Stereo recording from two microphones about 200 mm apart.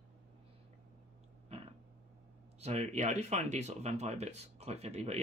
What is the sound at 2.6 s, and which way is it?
Speech, 35° right (ahead or behind).